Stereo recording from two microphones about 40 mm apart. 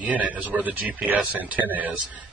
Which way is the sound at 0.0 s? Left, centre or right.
Right.